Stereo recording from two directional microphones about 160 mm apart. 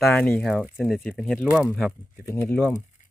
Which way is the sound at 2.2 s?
15° left (ahead or behind).